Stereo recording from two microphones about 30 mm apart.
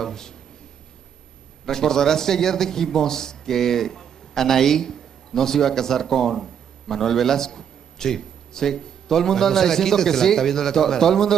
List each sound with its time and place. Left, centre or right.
0.0 s a man's voice: centre
1.7 s a man's voice: centre